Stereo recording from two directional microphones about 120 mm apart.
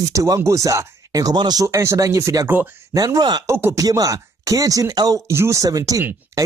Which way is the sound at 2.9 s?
30° right (ahead or behind).